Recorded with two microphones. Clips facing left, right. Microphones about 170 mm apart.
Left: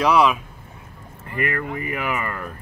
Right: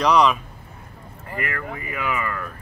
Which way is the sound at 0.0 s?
5° left (ahead or behind).